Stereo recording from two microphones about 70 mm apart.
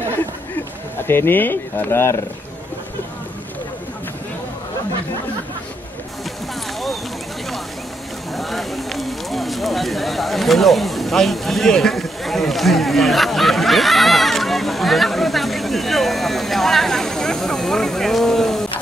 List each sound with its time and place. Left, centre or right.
1.0 s speech: left
8.4 s run: centre